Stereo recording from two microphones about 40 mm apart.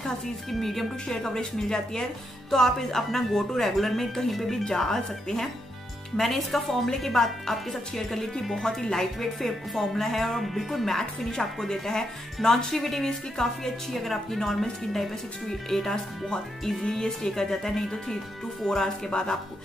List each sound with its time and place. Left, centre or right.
0.5 s speech: centre
1.0 s speech: centre